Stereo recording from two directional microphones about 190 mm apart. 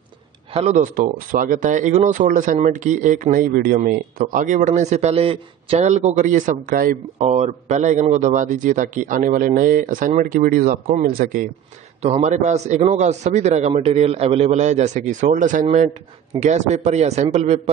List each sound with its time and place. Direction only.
0.5 s speech: 35° right (ahead or behind); by 11.4 s 50° right (ahead or behind)
12.0 s a man's voice: 35° right (ahead or behind)